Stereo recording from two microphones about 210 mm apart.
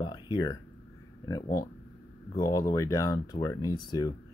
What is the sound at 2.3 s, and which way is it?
Speech, 15° left (ahead or behind).